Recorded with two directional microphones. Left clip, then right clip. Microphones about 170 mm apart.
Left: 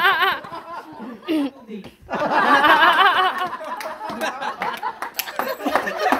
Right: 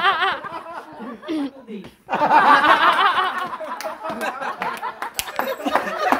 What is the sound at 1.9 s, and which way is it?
Chuckle, 15° right (ahead or behind).